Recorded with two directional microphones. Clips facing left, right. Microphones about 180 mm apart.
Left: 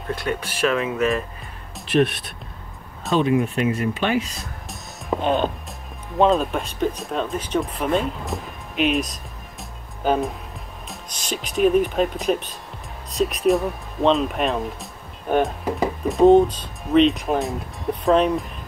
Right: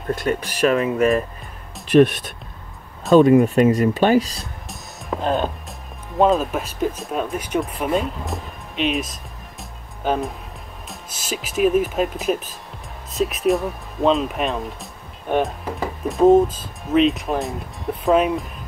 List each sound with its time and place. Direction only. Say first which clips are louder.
0.1 s speech: right 4 dB; 45° right (ahead or behind)
4.6 s speech: left 3 dB; centre (ahead or behind)